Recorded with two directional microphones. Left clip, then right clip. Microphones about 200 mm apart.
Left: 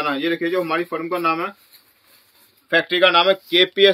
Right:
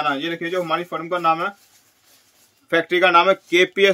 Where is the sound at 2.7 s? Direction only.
35° right (ahead or behind).